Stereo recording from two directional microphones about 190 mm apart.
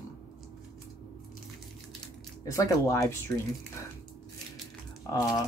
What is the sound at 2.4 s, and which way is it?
Speech, 15° left (ahead or behind).